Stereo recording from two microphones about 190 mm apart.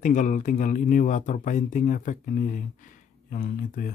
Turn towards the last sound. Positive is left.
turn(degrees=45)  # may be behind; listen again after turning